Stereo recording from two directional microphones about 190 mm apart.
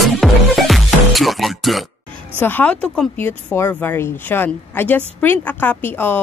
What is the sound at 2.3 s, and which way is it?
Speech, 10° left (ahead or behind).